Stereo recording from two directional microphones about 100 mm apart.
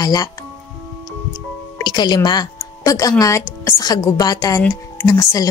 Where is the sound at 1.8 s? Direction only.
45° left (ahead or behind).